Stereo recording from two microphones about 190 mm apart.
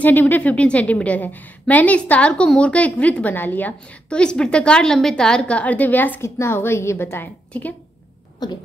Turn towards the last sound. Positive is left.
turn(degrees=10)  # may be behind; listen again after turning